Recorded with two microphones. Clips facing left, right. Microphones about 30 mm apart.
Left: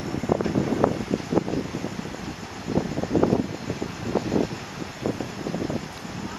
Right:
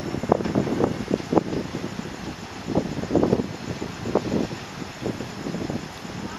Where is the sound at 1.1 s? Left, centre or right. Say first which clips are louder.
Right 2 dB; left.